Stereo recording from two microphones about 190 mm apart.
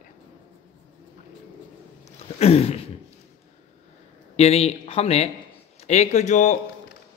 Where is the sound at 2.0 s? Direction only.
30° left (ahead or behind).